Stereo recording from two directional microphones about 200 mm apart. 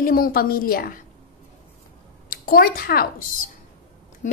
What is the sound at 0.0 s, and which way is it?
A woman's voice, 45° left (ahead or behind).